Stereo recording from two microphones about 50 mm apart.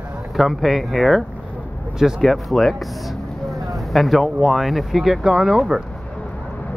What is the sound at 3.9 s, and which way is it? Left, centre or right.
Speech, centre.